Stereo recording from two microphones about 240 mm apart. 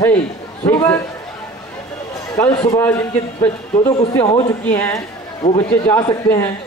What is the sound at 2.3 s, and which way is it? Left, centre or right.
A man's voice, centre.